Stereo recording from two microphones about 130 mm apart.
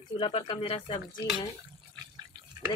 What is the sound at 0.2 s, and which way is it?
Speech, 40° left (ahead or behind).